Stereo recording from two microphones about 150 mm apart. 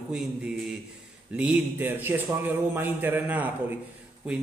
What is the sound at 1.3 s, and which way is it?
A man's voice, 10° right (ahead or behind).